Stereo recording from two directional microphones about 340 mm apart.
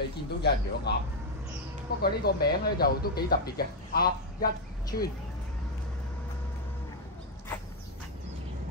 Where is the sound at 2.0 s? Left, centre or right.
Left.